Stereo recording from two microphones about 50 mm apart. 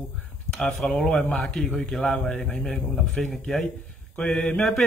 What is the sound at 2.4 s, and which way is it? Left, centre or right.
Speech, centre.